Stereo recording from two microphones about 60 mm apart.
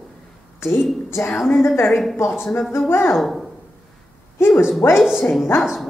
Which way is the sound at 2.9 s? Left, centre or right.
Left.